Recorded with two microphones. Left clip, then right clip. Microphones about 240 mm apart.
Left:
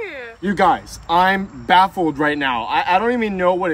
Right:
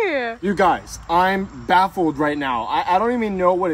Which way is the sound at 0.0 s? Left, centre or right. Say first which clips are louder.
Right 9 dB; right.